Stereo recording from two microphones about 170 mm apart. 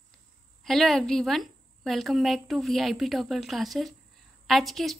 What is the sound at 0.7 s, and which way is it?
A woman's voice, centre (ahead or behind).